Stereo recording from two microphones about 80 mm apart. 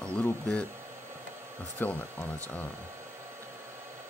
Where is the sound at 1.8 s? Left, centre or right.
Centre.